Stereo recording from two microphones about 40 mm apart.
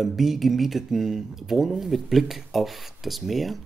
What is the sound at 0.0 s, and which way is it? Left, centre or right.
Speech, centre.